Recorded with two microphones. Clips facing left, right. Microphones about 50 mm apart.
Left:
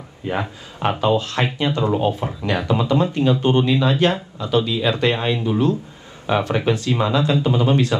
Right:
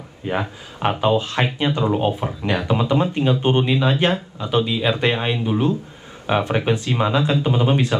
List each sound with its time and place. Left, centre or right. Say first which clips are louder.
0.3 s speech: even; centre